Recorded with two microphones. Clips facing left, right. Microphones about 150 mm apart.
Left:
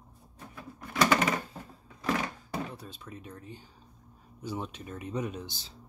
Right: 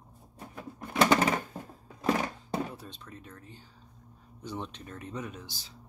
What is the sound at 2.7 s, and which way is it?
Speech, 5° left (ahead or behind).